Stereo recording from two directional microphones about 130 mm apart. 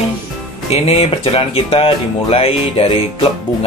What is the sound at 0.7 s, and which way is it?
Speech, 50° left (ahead or behind).